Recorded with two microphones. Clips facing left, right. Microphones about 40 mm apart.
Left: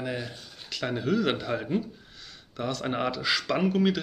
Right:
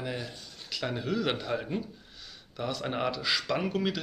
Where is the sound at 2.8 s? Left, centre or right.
Centre.